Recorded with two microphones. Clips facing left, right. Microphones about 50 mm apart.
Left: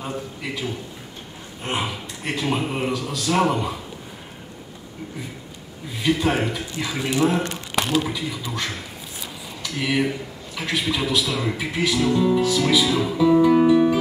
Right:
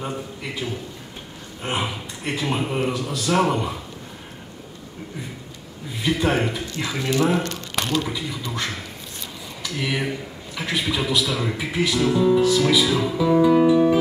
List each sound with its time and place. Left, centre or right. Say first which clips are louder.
0.0 s a sound: even; centre
1.6 s a man's voice: even; centre
6.0 s a man's voice: even; centre
7.0 s speech: even; centre
7.7 s speech: left 2 dB; centre
13.5 s music: even; centre